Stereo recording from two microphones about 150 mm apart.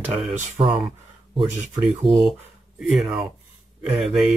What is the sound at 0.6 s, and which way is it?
Speech, 35° right (ahead or behind).